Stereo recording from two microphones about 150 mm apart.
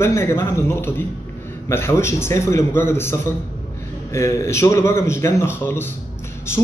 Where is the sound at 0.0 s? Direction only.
15° left (ahead or behind).